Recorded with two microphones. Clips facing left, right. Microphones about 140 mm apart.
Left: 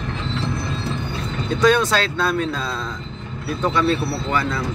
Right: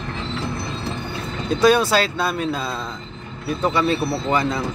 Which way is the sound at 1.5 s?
10° right (ahead or behind).